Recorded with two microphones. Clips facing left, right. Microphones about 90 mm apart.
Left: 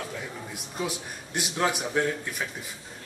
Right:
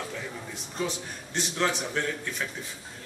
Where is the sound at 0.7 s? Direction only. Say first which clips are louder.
Even; 10° left (ahead or behind).